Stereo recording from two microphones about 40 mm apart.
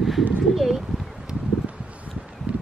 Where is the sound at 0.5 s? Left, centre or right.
Centre.